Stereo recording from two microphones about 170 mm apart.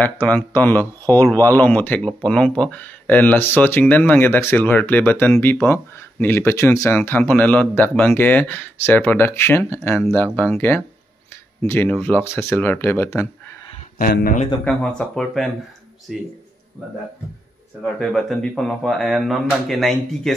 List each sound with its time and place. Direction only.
0.0 s speech: 10° left (ahead or behind)
13.9 s speech: 60° left (ahead or behind)
14.6 s speech: 5° left (ahead or behind)
17.8 s speech: centre (ahead or behind)